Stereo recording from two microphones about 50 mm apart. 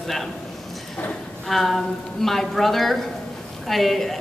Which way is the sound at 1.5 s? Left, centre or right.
Centre.